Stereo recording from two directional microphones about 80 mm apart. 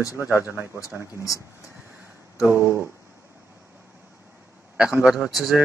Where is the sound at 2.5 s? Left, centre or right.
Right.